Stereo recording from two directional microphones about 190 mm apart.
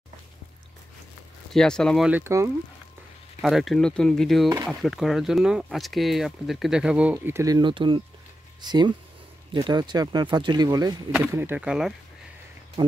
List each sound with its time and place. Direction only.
1.5 s speech: 5° left (ahead or behind); by 2.5 s 15° right (ahead or behind)
3.3 s speech: centre (ahead or behind); by 11.0 s 20° right (ahead or behind)
11.1 s speech: 10° right (ahead or behind)
12.8 s speech: 20° right (ahead or behind)